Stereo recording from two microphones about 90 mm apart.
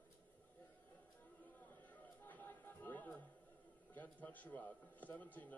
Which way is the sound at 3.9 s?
20° left (ahead or behind).